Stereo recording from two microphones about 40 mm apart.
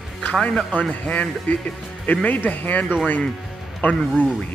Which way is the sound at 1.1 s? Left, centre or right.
Left.